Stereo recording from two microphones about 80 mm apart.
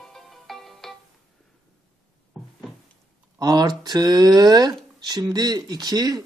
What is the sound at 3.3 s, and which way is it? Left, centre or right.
A man's voice, right.